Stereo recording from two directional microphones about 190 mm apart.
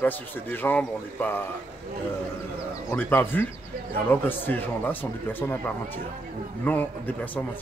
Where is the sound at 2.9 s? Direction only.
10° left (ahead or behind).